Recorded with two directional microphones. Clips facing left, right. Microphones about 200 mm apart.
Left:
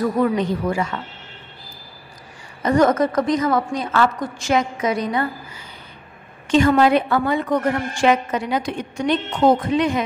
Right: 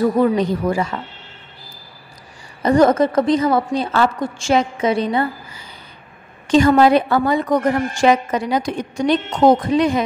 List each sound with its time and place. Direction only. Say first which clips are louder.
0.0 s a woman's voice: right 3 dB; 35° right (ahead or behind)
2.6 s a woman's voice: right 3 dB; 30° right (ahead or behind)
6.4 s a woman's voice: right 3 dB; 35° right (ahead or behind)